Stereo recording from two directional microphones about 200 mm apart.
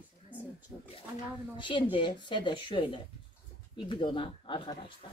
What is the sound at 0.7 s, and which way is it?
Speech, 15° left (ahead or behind).